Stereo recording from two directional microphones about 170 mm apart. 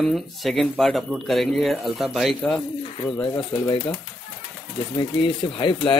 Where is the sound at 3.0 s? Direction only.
25° left (ahead or behind).